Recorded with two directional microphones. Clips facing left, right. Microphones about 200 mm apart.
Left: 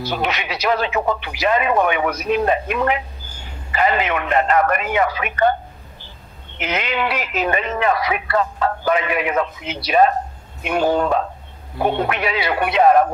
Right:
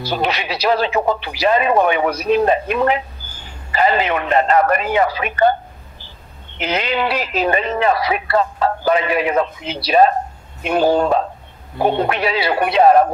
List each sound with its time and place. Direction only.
0.0 s a man's voice: 35° right (ahead or behind)